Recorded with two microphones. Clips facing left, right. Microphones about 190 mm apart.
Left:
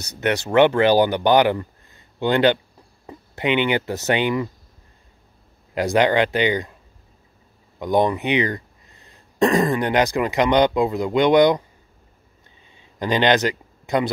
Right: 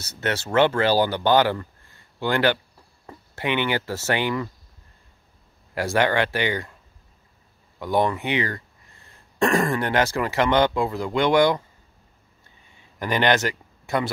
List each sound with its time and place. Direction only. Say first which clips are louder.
0.0 s speech: left 5 dB; 15° left (ahead or behind)
5.8 s speech: left 4 dB; 20° left (ahead or behind)
7.8 s speech: left 3 dB; 20° left (ahead or behind)
12.7 s a sound: left 3 dB; 20° left (ahead or behind)